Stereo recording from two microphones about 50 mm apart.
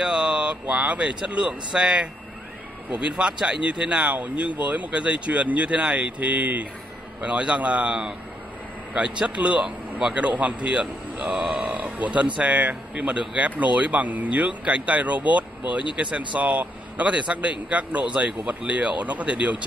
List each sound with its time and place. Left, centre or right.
0.0 s a sound: centre
0.8 s speech: centre
8.9 s speech: right
9.7 s speech: centre
10.1 s speech: right
11.4 s speech: centre
11.7 s speech: right